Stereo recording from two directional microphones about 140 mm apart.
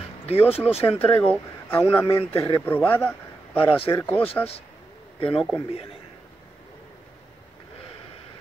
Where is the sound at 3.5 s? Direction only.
40° left (ahead or behind).